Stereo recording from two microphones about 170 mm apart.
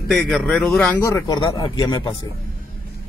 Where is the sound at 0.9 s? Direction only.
20° left (ahead or behind).